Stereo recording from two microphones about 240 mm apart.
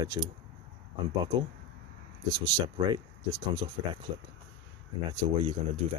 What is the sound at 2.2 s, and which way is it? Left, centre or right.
Speech, centre.